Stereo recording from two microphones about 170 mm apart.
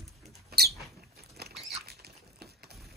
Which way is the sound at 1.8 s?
70° right (ahead or behind).